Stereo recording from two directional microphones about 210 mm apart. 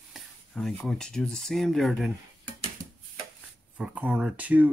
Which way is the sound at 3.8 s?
5° right (ahead or behind).